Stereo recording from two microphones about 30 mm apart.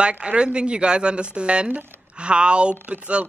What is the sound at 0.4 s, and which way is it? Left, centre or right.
Speech, right.